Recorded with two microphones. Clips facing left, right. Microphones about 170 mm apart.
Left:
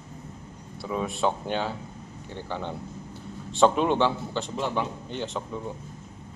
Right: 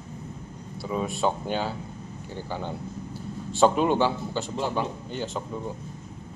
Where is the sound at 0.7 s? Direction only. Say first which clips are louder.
Right 1 dB; centre (ahead or behind).